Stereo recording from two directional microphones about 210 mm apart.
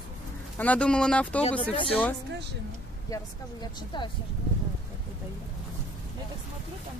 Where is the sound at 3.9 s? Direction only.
20° left (ahead or behind).